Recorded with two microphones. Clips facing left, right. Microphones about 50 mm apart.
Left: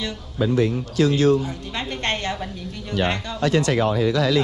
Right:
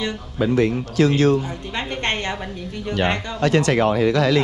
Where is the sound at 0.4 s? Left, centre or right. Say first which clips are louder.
Right 2 dB; right.